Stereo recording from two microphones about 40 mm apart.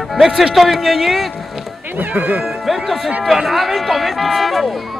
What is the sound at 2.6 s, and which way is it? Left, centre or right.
Speech, centre.